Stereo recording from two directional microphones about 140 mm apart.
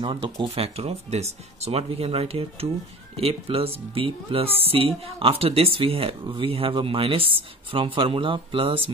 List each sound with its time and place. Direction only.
0.0 s speech: 35° right (ahead or behind)